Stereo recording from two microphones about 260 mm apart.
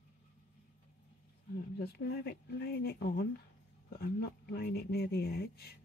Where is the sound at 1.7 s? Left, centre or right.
Left.